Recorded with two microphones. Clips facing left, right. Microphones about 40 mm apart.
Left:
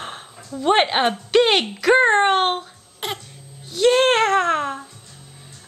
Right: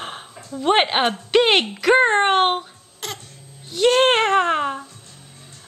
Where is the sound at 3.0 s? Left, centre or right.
Left.